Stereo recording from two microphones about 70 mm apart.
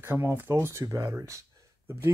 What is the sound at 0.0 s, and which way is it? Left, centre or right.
Speech, right.